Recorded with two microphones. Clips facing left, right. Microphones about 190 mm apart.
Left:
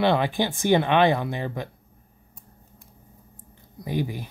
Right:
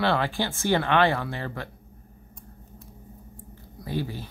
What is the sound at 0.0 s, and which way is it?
Speech, 20° left (ahead or behind).